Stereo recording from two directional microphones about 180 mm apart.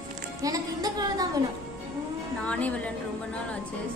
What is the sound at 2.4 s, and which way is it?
Speech, 5° left (ahead or behind).